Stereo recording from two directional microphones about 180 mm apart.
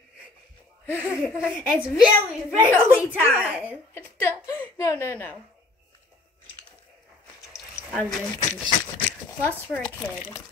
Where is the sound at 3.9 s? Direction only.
15° left (ahead or behind).